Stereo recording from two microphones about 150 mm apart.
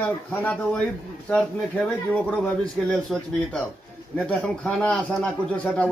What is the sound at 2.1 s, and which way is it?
A man's voice, 10° left (ahead or behind).